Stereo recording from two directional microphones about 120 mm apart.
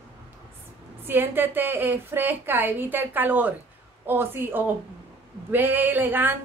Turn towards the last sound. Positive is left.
turn(degrees=-15)  # may be behind; listen again after turning